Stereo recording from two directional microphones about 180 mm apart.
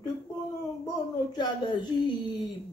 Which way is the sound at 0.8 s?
25° left (ahead or behind).